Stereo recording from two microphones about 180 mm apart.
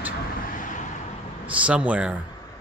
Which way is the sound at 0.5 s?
45° left (ahead or behind).